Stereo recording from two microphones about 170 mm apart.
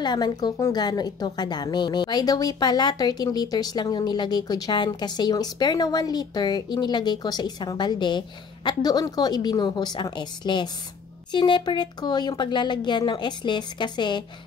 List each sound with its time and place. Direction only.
0.0 s a woman's voice: 25° left (ahead or behind)